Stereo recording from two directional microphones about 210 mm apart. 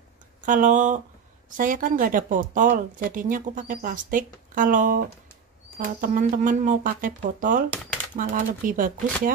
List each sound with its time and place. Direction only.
0.4 s speech: 40° right (ahead or behind)